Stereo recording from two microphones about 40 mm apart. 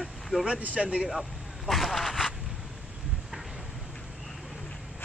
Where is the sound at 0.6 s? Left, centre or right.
Right.